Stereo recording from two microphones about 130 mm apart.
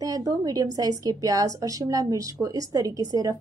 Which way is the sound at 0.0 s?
30° right (ahead or behind).